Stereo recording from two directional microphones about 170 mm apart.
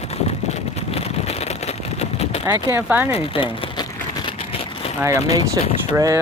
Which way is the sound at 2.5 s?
15° right (ahead or behind).